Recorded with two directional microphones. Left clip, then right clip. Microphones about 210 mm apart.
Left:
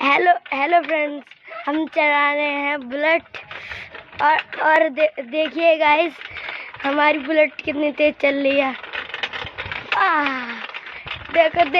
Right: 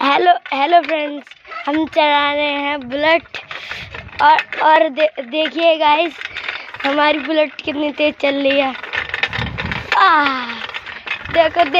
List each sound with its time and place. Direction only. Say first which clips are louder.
0.0 s a woman's voice: right 3 dB; 10° right (ahead or behind)
6.8 s a woman's voice: right 3 dB; 15° right (ahead or behind)
8.9 s vehicle: right 7 dB; 40° right (ahead or behind)
9.9 s a child's voice: right 6 dB; 20° right (ahead or behind)